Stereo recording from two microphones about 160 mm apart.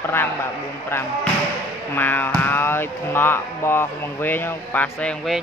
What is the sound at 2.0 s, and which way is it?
Speech, 10° left (ahead or behind).